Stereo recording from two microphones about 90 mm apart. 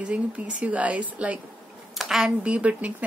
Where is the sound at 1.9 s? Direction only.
5° right (ahead or behind).